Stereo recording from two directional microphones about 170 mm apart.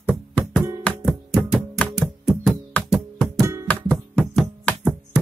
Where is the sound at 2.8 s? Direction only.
10° left (ahead or behind).